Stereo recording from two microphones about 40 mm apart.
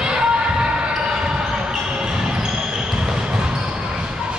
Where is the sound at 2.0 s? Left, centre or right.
Centre.